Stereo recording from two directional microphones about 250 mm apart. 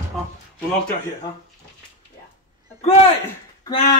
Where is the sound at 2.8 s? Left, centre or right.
Left.